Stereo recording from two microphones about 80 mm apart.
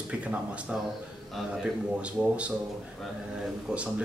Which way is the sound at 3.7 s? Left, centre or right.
Centre.